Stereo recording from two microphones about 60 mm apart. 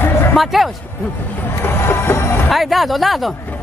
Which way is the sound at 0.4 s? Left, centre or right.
Centre.